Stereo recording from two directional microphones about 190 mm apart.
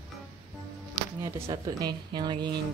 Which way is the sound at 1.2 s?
15° right (ahead or behind).